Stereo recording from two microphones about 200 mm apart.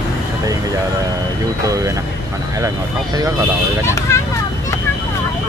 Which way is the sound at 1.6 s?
15° right (ahead or behind).